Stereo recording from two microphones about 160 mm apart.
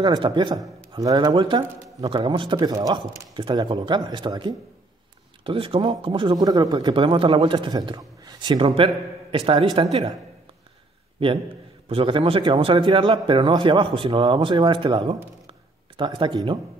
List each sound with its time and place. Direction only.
0.0 s speech: 30° right (ahead or behind)
11.9 s speech: 35° right (ahead or behind)